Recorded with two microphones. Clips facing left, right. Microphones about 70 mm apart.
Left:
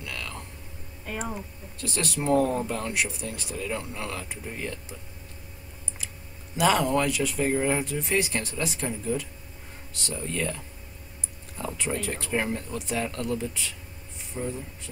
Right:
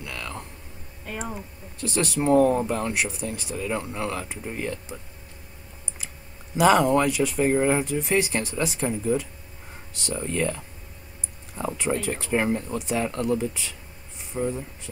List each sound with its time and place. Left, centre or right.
0.0 s a sound: centre
1.0 s speech: centre
3.7 s speech: centre
6.7 s speech: centre
10.2 s speech: centre
11.9 s speech: centre